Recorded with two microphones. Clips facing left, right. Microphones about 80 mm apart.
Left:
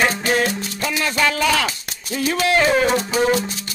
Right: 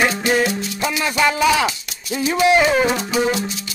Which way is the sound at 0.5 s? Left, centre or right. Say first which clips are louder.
Right 2 dB; left.